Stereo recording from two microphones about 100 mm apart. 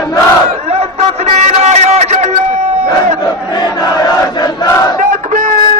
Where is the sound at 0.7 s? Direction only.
90° right.